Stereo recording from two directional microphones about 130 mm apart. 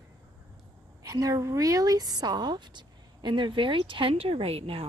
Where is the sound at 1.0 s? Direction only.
25° right (ahead or behind).